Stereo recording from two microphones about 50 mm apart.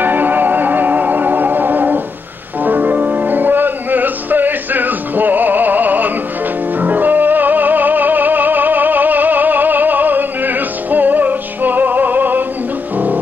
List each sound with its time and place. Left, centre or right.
0.0 s music: right